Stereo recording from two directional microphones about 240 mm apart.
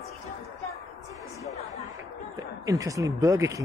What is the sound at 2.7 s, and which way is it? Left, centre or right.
Speech, centre.